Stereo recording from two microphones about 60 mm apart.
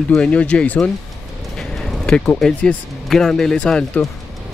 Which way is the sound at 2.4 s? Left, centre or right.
Centre.